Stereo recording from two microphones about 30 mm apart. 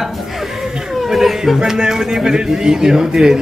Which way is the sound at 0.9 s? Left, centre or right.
Centre.